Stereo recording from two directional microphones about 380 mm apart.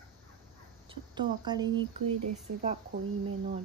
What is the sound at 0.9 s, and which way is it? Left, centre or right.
Speech, centre.